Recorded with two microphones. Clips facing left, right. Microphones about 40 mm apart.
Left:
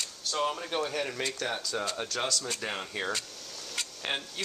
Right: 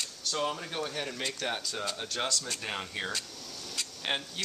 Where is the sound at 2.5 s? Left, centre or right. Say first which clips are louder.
Left 1 dB; centre.